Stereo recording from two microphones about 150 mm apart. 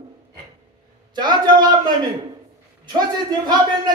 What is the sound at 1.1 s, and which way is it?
Speech, 30° right (ahead or behind).